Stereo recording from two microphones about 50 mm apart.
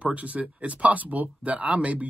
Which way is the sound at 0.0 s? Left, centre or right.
Right.